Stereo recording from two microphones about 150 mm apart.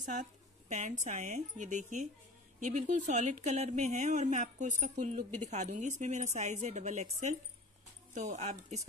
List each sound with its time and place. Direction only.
0.0 s a woman's voice: 55° right (ahead or behind)